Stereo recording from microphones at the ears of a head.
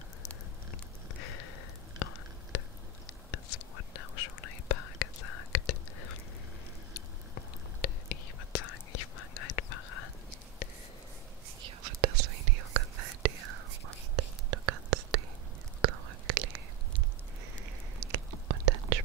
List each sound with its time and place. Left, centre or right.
1.1 s a sound: left
3.3 s whispering: left
11.6 s whispering: right